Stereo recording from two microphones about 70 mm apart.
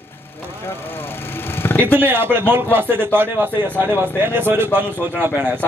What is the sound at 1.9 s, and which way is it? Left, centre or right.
A man's voice, right.